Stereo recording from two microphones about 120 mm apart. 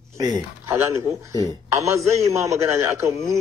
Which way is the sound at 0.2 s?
35° right (ahead or behind).